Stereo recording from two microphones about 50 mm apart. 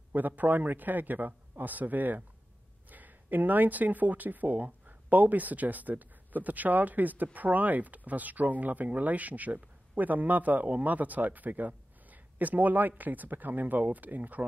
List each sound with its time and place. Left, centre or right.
0.1 s speech: right